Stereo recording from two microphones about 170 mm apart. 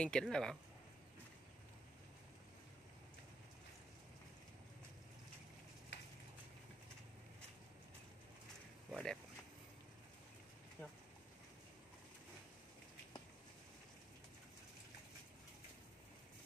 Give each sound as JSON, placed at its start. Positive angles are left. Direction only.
{"t": 0.0, "sound": "speech", "side_deg": 5}
{"t": 5.9, "sound": "a sound", "side_deg": 90}
{"t": 8.9, "sound": "speech", "side_deg": 5}